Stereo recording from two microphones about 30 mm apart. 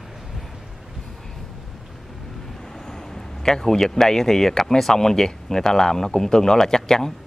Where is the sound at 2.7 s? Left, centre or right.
Centre.